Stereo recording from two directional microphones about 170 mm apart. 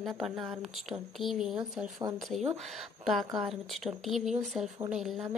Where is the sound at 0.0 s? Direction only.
Centre (ahead or behind).